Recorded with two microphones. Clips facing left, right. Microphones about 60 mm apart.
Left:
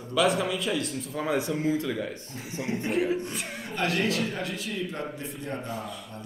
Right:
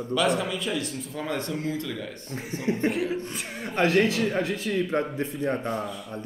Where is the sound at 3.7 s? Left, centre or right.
Right.